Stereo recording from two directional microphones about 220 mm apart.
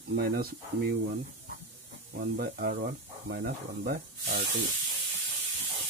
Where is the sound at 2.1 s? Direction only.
45° right (ahead or behind).